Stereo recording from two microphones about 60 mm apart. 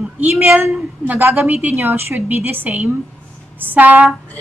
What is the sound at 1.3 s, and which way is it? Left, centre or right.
A woman's voice, right.